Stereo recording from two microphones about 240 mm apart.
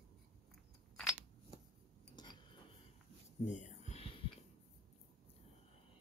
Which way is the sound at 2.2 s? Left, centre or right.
Centre.